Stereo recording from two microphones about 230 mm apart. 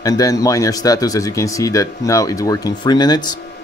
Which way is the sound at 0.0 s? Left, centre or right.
Centre.